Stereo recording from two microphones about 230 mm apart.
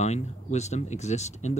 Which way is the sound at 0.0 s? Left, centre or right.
Left.